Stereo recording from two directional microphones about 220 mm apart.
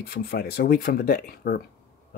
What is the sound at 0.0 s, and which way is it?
Speech, 45° left (ahead or behind).